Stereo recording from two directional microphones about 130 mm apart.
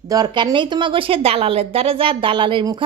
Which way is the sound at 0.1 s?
35° right (ahead or behind).